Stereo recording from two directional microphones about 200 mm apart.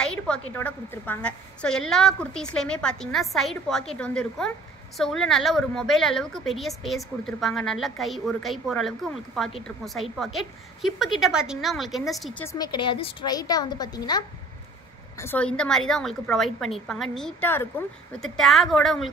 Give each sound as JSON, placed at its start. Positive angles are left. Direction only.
{"t": 0.0, "sound": "a woman's voice", "side_deg": 5}
{"t": 12.5, "sound": "a woman's voice", "side_deg": 20}
{"t": 15.1, "sound": "a woman's voice", "side_deg": 10}